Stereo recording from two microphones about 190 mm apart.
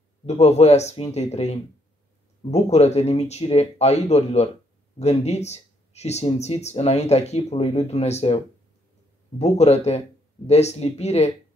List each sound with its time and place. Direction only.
0.3 s speech: 35° left (ahead or behind)
9.4 s speech: 35° left (ahead or behind)